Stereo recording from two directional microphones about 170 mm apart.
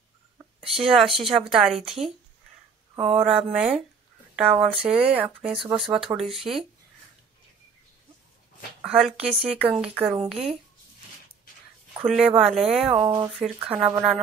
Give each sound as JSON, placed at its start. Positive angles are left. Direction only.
{"t": 0.6, "sound": "speech", "side_deg": 0}
{"t": 3.2, "sound": "speech", "side_deg": -5}
{"t": 8.8, "sound": "speech", "side_deg": -5}
{"t": 12.0, "sound": "speech", "side_deg": -5}
{"t": 12.9, "sound": "speech", "side_deg": -25}
{"t": 13.3, "sound": "speech", "side_deg": 0}